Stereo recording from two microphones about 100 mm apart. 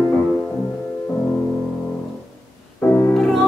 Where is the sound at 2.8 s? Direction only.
30° left (ahead or behind).